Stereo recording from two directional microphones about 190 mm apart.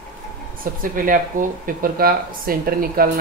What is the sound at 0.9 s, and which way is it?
Speech, 45° right (ahead or behind).